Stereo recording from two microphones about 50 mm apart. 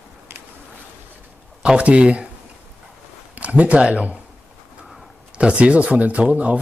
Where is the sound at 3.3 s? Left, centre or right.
Right.